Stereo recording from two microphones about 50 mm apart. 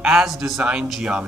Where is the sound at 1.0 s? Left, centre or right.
Right.